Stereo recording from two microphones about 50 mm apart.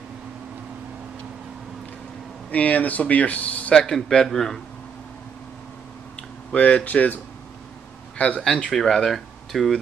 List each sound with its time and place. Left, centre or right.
2.5 s speech: left
3.7 s speech: centre
6.1 s speech: left
8.2 s speech: left
8.5 s speech: centre